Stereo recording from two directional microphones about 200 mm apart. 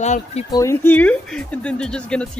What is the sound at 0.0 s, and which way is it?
Speech, 35° left (ahead or behind).